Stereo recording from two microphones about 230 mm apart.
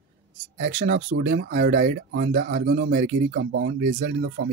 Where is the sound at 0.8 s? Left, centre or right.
Right.